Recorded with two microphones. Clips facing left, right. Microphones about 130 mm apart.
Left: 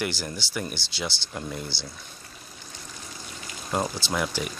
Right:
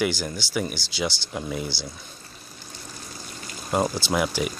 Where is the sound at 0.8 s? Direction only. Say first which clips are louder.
Right 2 dB; 25° left (ahead or behind).